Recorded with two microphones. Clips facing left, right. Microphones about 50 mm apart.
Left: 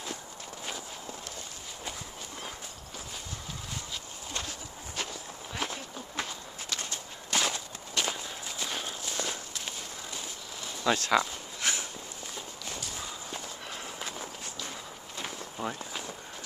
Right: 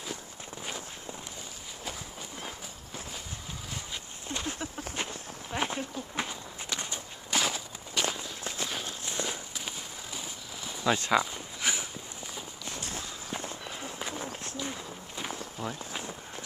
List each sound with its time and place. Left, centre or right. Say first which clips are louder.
4.9 s walk: right 1 dB; right
7.3 s walk: even; centre
9.0 s walk: even; centre
13.7 s run: right 1 dB; centre
15.5 s speech: left 1 dB; centre
15.9 s a sound: right 1 dB; centre